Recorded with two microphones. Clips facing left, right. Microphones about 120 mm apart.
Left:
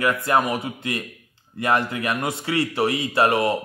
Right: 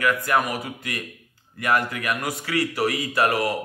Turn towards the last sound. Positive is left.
turn(degrees=25)  # may be behind; listen again after turning